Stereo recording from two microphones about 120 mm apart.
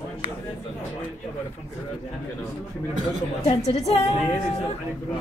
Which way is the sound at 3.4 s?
55° left (ahead or behind).